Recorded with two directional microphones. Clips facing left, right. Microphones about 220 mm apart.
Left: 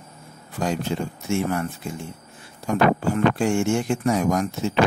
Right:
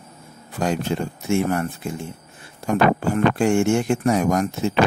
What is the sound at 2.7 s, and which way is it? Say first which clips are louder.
Speech: right 1 dB; 55° right (ahead or behind).